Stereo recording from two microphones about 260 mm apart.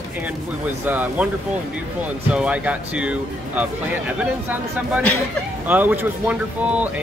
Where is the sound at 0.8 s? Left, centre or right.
Centre.